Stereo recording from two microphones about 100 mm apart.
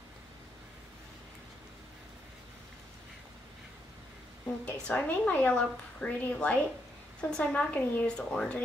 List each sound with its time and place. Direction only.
4.6 s a woman's voice: 15° left (ahead or behind)